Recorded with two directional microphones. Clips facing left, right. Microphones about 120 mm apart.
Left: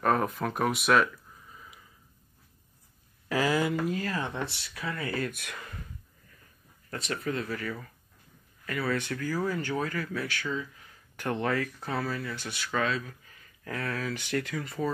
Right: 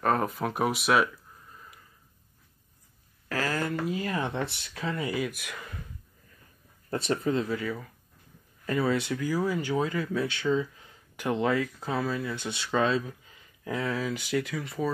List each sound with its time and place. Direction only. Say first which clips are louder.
0.0 s speech: even; centre (ahead or behind)
3.3 s a sound: left 3 dB; 15° left (ahead or behind)
4.0 s speech: right 2 dB; 20° right (ahead or behind)
5.1 s speech: right 2 dB; 5° right (ahead or behind)
6.9 s speech: right 6 dB; 25° right (ahead or behind); by 7.9 s 10° right (ahead or behind)
8.6 s speech: right 5 dB; 25° right (ahead or behind)
8.9 s speech: right 3 dB; 15° right (ahead or behind)
11.1 s speech: right 3 dB; 10° right (ahead or behind)